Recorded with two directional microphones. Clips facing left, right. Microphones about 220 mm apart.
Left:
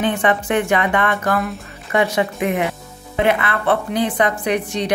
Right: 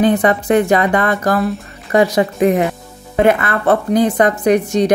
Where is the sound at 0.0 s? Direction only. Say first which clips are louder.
Right 5 dB; 40° right (ahead or behind).